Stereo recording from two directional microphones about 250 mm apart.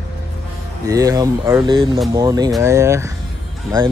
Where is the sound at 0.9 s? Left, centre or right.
Centre.